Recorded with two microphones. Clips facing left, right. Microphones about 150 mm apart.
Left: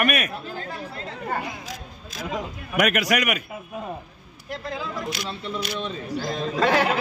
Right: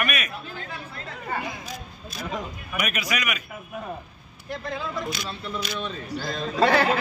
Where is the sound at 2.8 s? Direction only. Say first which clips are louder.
Left 7 dB; 80° left; by 3.4 s 60° left (ahead or behind).